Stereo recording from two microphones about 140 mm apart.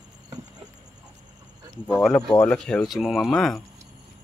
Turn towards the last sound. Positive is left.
turn(degrees=0)  # may be behind; listen again after turning